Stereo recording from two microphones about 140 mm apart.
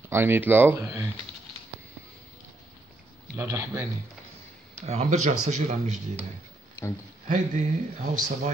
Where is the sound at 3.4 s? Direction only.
20° right (ahead or behind).